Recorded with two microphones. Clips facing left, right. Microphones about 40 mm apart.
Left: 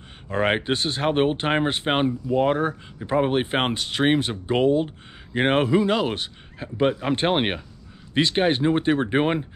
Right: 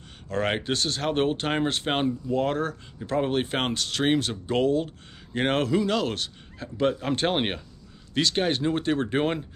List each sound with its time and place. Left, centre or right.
0.3 s speech: left